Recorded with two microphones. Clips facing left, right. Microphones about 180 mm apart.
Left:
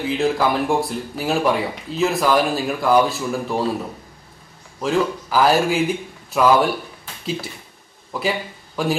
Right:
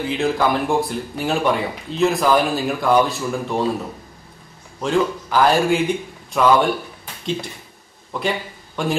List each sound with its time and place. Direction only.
0.0 s speech: centre (ahead or behind)
4.7 s speech: 5° left (ahead or behind)
8.1 s speech: 5° left (ahead or behind)